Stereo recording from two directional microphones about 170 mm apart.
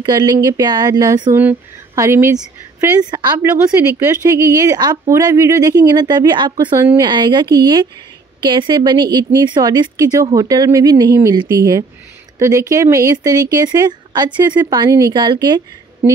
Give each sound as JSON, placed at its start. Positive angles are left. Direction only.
{"t": 0.0, "sound": "speech", "side_deg": -25}